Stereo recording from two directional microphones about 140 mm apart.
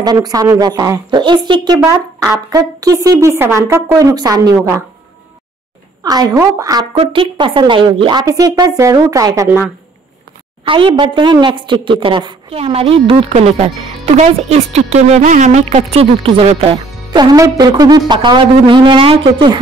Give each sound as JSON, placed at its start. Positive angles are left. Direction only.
{"t": 0.0, "sound": "speech", "side_deg": -30}
{"t": 6.0, "sound": "speech", "side_deg": -30}
{"t": 7.0, "sound": "speech", "side_deg": -40}
{"t": 10.7, "sound": "a woman's voice", "side_deg": -35}
{"t": 17.2, "sound": "a woman's voice", "side_deg": -30}